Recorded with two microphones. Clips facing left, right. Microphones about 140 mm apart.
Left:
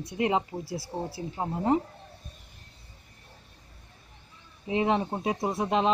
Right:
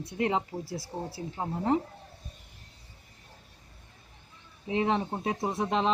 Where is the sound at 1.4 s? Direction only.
15° left (ahead or behind).